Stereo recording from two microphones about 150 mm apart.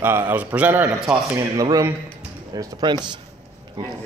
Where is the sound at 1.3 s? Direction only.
20° right (ahead or behind).